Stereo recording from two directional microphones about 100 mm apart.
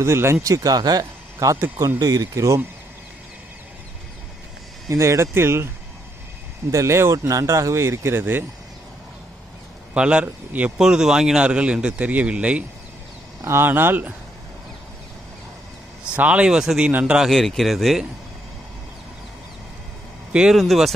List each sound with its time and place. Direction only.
0.0 s speech: 25° right (ahead or behind)
4.8 s speech: 30° right (ahead or behind)
6.7 s speech: 30° right (ahead or behind)
9.9 s speech: 10° right (ahead or behind)
13.4 s speech: 25° right (ahead or behind)
16.1 s speech: 10° right (ahead or behind)
20.5 s speech: centre (ahead or behind)